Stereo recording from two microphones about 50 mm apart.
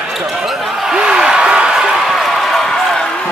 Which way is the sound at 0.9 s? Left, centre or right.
Centre.